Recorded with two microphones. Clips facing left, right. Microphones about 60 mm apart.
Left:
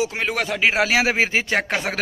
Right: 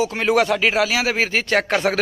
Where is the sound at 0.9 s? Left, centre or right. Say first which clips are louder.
Left 1 dB; left; by 2.0 s centre.